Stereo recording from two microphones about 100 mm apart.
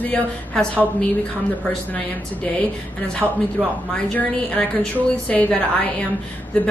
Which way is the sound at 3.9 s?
10° left (ahead or behind).